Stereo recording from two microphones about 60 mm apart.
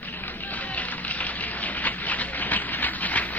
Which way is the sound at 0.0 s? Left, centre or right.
Left.